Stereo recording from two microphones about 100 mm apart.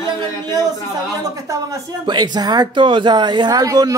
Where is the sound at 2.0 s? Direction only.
45° right (ahead or behind).